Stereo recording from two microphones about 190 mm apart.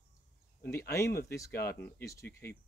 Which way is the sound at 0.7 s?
15° left (ahead or behind).